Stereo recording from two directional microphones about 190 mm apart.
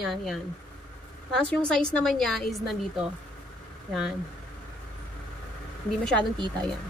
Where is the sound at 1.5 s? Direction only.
5° left (ahead or behind).